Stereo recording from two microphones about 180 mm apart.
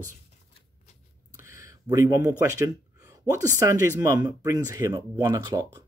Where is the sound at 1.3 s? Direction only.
15° right (ahead or behind).